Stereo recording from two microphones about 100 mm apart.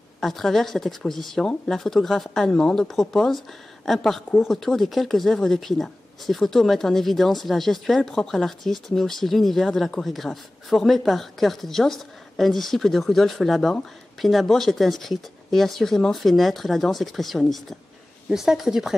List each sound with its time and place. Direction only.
0.2 s speech: 5° left (ahead or behind)